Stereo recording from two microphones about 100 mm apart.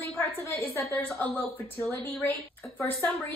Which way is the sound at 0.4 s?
20° left (ahead or behind).